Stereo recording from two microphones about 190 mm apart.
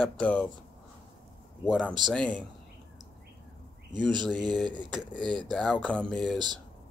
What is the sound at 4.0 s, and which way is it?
Speech, 25° right (ahead or behind).